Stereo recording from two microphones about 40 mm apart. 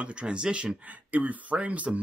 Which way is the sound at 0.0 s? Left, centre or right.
Right.